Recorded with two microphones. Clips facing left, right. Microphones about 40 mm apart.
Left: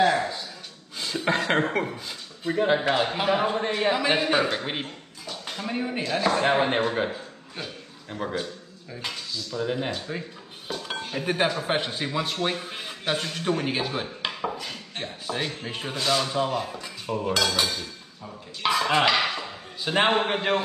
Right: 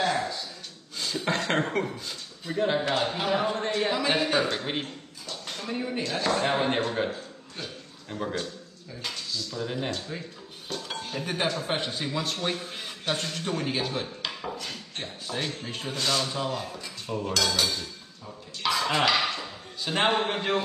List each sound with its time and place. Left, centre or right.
0.0 s a sound: centre
0.9 s a man's voice: centre
6.0 s a man's voice: centre
10.7 s dishes: centre
11.2 s a man's voice: centre
13.4 s chopping: centre
14.6 s a sound: centre
15.6 s a man's voice: centre